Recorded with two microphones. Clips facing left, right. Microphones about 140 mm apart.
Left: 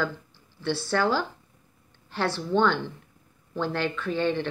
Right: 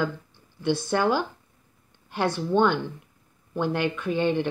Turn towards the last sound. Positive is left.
turn(degrees=-15)  # may be behind; listen again after turning